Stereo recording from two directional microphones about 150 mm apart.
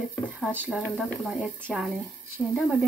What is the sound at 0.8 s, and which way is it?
Speech, 10° left (ahead or behind).